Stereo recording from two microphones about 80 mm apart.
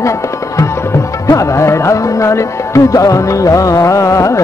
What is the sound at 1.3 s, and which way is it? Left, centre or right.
Music, left.